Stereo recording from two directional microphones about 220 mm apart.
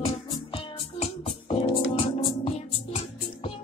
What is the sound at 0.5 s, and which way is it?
Music, 30° left (ahead or behind).